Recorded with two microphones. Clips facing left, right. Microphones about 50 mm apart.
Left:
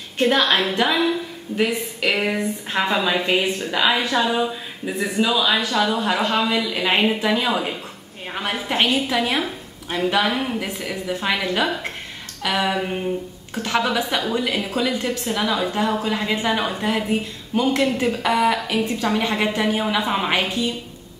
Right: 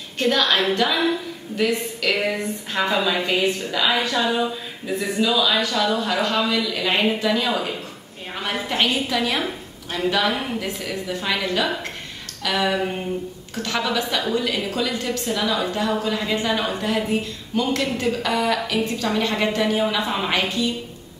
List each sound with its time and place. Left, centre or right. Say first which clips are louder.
0.2 s a woman's voice: left 2 dB; left
0.9 s speech: left 1 dB; centre
1.6 s a woman's voice: even; centre
3.3 s a woman's voice: left 1 dB; left
10.6 s a woman's voice: even; left
12.4 s a woman's voice: even; centre